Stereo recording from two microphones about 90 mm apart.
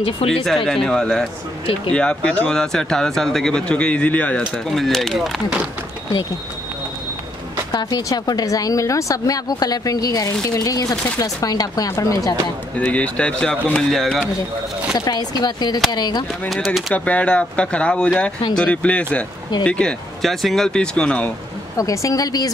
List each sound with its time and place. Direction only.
0.2 s speech: 90° left
0.7 s speech: 5° left (ahead or behind)
4.4 s speech: centre (ahead or behind)
7.7 s a woman's voice: 50° left (ahead or behind)
11.9 s a woman's voice: 35° left (ahead or behind)
12.7 s speech: 15° left (ahead or behind)
15.0 s speech: 50° left (ahead or behind)
16.4 s speech: centre (ahead or behind)
16.9 s speech: 15° left (ahead or behind)
21.7 s a woman's voice: 35° left (ahead or behind)